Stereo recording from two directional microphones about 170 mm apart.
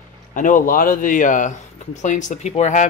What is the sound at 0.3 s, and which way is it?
Speech, 50° left (ahead or behind).